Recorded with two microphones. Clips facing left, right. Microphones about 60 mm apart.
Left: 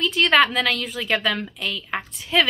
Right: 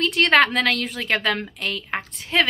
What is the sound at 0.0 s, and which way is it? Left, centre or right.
A woman's voice, right.